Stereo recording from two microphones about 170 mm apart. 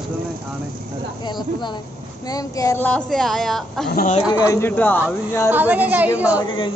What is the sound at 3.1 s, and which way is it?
Speech, centre (ahead or behind).